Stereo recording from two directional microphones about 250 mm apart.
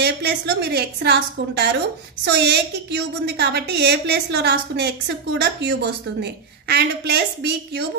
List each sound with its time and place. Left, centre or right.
0.0 s a woman's voice: right